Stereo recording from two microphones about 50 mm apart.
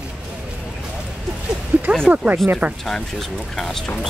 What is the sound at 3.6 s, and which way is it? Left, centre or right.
Speech, centre.